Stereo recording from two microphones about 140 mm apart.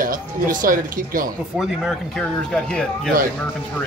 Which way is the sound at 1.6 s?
Centre (ahead or behind).